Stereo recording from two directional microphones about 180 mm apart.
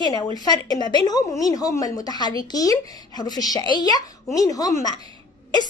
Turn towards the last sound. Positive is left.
turn(degrees=20)  # may be behind; listen again after turning